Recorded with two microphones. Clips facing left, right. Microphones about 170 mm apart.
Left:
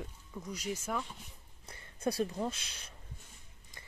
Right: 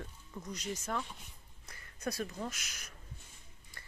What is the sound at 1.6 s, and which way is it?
Speech, 30° left (ahead or behind).